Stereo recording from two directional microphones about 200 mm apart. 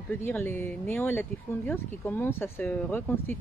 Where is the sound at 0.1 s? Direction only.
10° left (ahead or behind).